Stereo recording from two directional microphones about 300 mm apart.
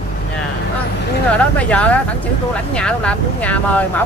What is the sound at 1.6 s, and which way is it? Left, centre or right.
Speech, centre.